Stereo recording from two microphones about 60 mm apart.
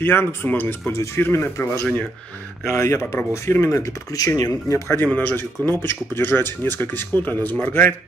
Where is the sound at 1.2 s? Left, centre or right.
Left.